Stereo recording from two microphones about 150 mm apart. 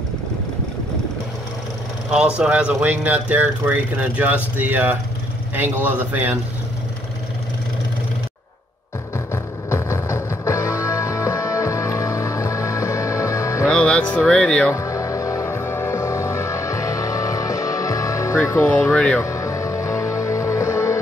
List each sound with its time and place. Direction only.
2.0 s speech: 5° right (ahead or behind)
9.3 s music: 20° left (ahead or behind)
13.7 s speech: 5° left (ahead or behind)
14.7 s music: 20° left (ahead or behind)
18.5 s speech: 15° left (ahead or behind)
19.2 s music: 20° left (ahead or behind)